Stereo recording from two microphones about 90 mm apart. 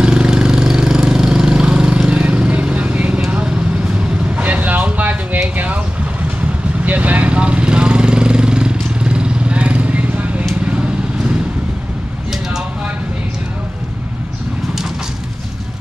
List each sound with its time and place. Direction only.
0.0 s engine: 10° right (ahead or behind)
3.3 s vehicle: 15° right (ahead or behind)
4.4 s a sound: 20° right (ahead or behind)
6.8 s vehicle: 15° right (ahead or behind)